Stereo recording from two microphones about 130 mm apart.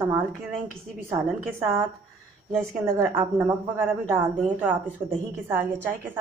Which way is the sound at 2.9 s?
15° right (ahead or behind).